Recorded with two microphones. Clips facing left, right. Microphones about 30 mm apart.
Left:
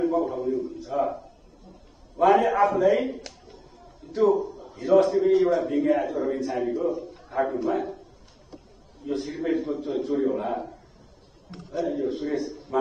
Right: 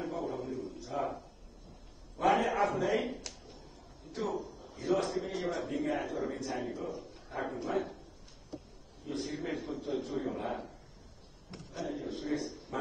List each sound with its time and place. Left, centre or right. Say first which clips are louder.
0.0 s a sound: left 12 dB; centre
4.1 s a man's voice: left 15 dB; centre
9.0 s a man's voice: left 9 dB; centre